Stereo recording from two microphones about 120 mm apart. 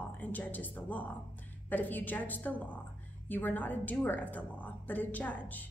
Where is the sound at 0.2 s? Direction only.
15° left (ahead or behind).